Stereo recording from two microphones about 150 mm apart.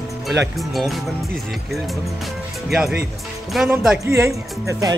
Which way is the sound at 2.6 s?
Centre (ahead or behind).